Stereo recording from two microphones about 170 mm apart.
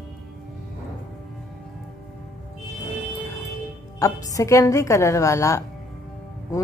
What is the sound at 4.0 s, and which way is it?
A woman's voice, 20° left (ahead or behind).